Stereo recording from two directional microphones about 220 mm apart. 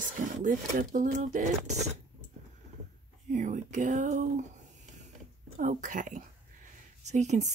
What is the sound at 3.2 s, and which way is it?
Speech, 35° right (ahead or behind).